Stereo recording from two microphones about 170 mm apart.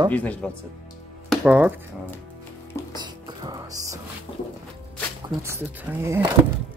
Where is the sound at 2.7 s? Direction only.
15° left (ahead or behind).